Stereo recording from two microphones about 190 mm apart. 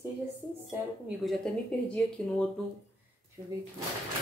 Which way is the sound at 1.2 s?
5° left (ahead or behind).